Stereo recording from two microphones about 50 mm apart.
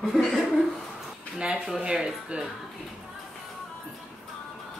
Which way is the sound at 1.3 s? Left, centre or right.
Centre.